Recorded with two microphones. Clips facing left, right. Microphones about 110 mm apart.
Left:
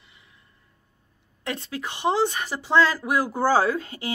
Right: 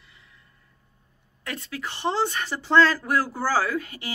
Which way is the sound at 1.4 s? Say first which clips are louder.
Left 3 dB; 25° left (ahead or behind).